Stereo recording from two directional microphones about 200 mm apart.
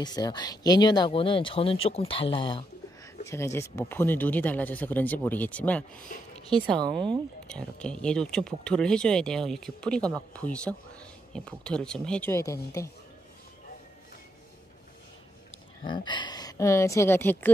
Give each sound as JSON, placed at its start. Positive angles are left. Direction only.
{"t": 0.0, "sound": "speech", "side_deg": 20}
{"t": 3.3, "sound": "speech", "side_deg": 15}
{"t": 7.4, "sound": "speech", "side_deg": 5}
{"t": 15.8, "sound": "speech", "side_deg": 20}